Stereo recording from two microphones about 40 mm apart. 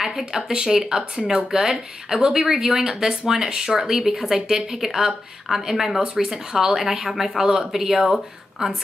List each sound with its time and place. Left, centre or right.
0.0 s speech: centre
1.6 s speech: centre